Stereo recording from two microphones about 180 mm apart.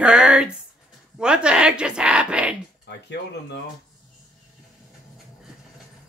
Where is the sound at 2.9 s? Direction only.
70° left (ahead or behind).